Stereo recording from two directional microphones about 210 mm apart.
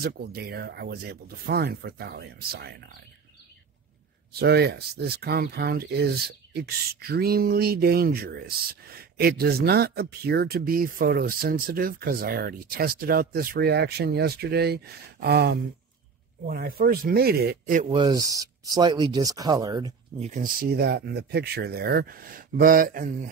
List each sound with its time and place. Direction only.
0.0 s speech: 45° right (ahead or behind)
4.3 s speech: 50° right (ahead or behind)
17.8 s speech: 20° right (ahead or behind)
20.2 s speech: 35° right (ahead or behind)